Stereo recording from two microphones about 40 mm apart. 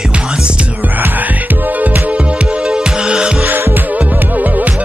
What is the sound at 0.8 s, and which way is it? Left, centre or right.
Music, right.